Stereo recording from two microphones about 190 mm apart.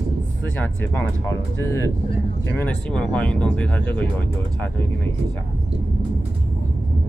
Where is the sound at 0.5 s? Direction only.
10° left (ahead or behind).